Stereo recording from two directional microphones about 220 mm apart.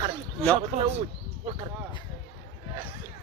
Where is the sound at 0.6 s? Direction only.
30° right (ahead or behind).